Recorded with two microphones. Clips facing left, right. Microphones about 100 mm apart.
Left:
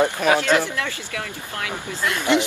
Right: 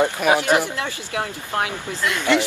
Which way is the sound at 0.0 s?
15° right (ahead or behind).